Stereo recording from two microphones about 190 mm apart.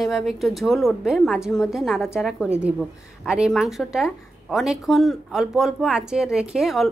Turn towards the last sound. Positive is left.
turn(degrees=0)  # may be behind; listen again after turning